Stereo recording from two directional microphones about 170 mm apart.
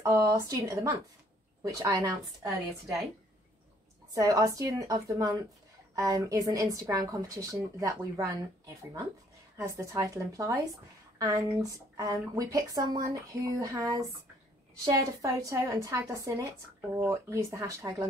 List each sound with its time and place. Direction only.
0.0 s a woman's voice: 20° right (ahead or behind)
4.1 s a woman's voice: 20° right (ahead or behind)